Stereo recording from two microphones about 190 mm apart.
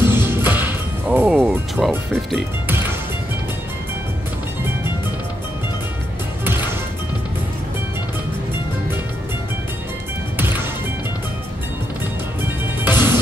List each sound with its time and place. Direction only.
0.0 s music: 10° right (ahead or behind)
12.8 s music: 10° right (ahead or behind)